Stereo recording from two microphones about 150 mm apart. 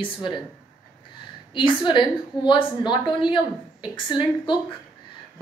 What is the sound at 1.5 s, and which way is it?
A woman's voice, 30° left (ahead or behind).